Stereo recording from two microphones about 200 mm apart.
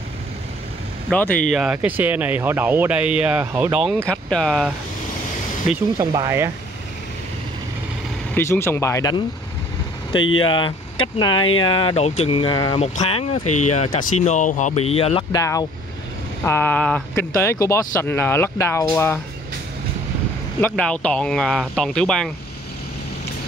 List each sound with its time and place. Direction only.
1.1 s speech: 5° left (ahead or behind)
1.5 s speech: 5° right (ahead or behind)
5.9 s speech: 15° right (ahead or behind)
8.4 s speech: 10° left (ahead or behind)
10.4 s speech: 25° left (ahead or behind)
12.7 s speech: 35° left (ahead or behind)
15.3 s speech: 15° left (ahead or behind)
20.6 s speech: 5° left (ahead or behind)